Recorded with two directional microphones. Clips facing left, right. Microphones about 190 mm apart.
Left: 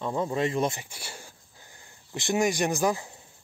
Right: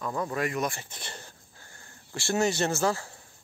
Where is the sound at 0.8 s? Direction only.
10° left (ahead or behind).